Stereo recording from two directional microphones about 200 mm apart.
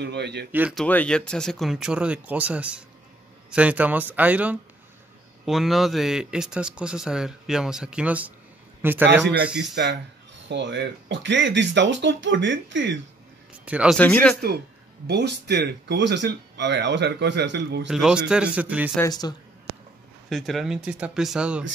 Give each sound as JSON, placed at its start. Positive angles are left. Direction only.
{"t": 0.0, "sound": "speech", "side_deg": -60}
{"t": 0.5, "sound": "speech", "side_deg": -5}
{"t": 0.8, "sound": "speech", "side_deg": 5}
{"t": 9.6, "sound": "speech", "side_deg": -60}
{"t": 13.7, "sound": "speech", "side_deg": -5}
{"t": 13.9, "sound": "speech", "side_deg": 10}
{"t": 15.0, "sound": "speech", "side_deg": -55}
{"t": 17.8, "sound": "speech", "side_deg": -5}
{"t": 18.9, "sound": "speech", "side_deg": 20}
{"t": 20.2, "sound": "speech", "side_deg": 0}